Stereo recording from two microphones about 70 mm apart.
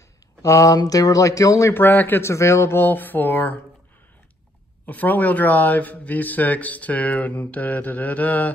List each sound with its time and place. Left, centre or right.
0.4 s speech: left
1.7 s speech: left
2.2 s speech: left
4.8 s speech: left